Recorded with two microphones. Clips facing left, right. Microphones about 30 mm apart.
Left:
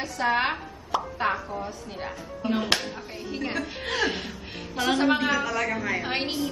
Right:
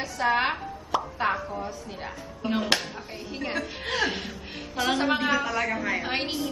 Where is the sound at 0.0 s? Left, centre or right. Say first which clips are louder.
Even; centre.